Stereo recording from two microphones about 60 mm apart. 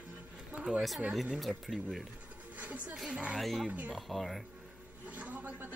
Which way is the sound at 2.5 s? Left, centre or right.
Right.